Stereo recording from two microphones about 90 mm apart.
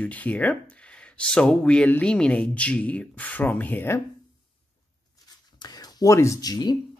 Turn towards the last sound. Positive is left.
turn(degrees=50)  # may be behind; listen again after turning